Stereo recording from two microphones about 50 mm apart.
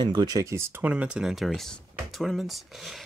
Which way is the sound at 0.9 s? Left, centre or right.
Right.